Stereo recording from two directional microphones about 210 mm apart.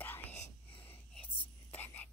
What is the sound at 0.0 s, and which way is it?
Whispering, 10° left (ahead or behind).